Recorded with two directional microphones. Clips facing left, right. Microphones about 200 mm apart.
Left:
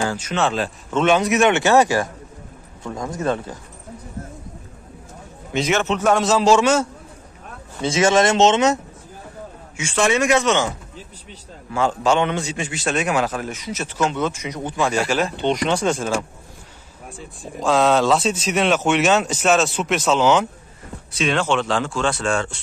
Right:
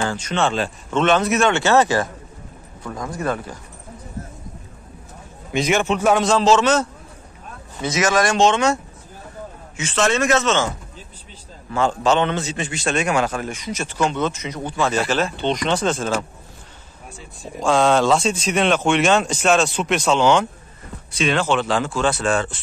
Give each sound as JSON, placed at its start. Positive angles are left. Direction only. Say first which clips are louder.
{"t": 0.0, "sound": "a man's voice", "louder": "even", "side_deg": 5}
{"t": 5.5, "sound": "a man's voice", "louder": "right 1 dB", "side_deg": -10}
{"t": 6.2, "sound": "a man's voice", "louder": "even", "side_deg": 10}
{"t": 7.8, "sound": "speech", "louder": "left 3 dB", "side_deg": 30}
{"t": 9.8, "sound": "a man's voice", "louder": "left 1 dB", "side_deg": 10}
{"t": 11.7, "sound": "a man's voice", "louder": "even", "side_deg": 10}
{"t": 17.4, "sound": "speech", "louder": "even", "side_deg": 0}